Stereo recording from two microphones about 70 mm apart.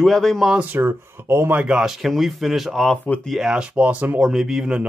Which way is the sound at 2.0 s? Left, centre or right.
Centre.